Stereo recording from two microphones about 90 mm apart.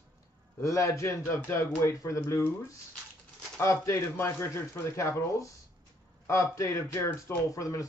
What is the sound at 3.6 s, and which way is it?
Speech, 30° left (ahead or behind).